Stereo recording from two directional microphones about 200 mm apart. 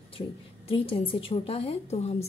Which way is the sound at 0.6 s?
25° left (ahead or behind).